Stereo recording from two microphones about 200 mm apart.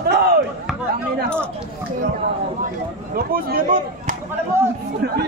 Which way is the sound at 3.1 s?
50° right (ahead or behind).